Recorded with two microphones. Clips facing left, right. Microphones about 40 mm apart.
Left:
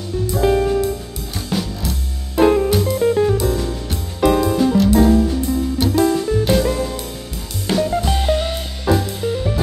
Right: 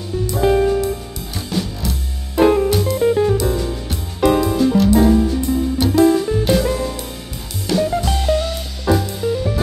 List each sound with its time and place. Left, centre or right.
0.4 s music: centre
7.7 s music: left
8.0 s music: centre
8.3 s music: left
8.8 s music: centre